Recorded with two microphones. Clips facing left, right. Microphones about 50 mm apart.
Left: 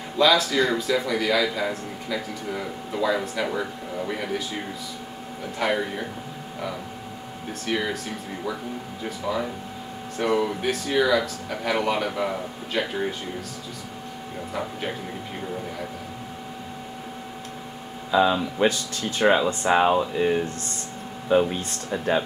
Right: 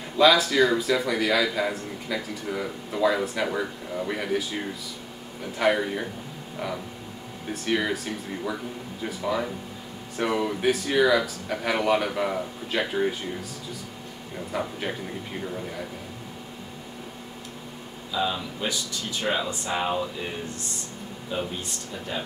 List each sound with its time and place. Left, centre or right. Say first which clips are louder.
0.2 s speech: right 1 dB; centre
5.6 s speech: right 2 dB; centre
7.6 s speech: right 1 dB; centre
9.0 s speech: even; centre
14.5 s speech: right 1 dB; centre
18.1 s speech: left 8 dB; left
21.3 s speech: left 11 dB; left